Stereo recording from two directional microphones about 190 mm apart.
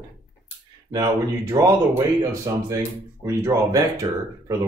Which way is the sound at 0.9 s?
20° right (ahead or behind).